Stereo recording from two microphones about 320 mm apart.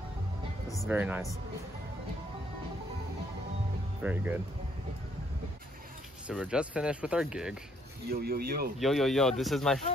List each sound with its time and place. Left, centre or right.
0.8 s speech: centre
4.0 s speech: centre
6.2 s speech: centre
8.1 s speech: right
8.7 s speech: centre